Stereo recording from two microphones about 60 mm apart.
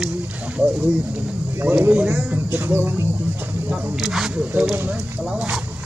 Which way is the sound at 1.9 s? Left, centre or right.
Right.